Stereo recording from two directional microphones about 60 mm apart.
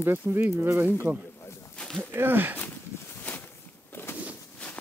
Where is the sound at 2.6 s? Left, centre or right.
Left.